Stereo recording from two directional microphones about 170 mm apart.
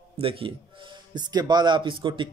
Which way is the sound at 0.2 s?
30° right (ahead or behind).